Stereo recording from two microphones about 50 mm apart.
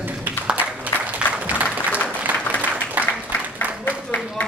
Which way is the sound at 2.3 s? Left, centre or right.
Right.